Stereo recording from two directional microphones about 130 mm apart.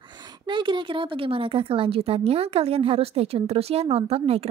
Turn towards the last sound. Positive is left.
turn(degrees=-50)  # may be behind; listen again after turning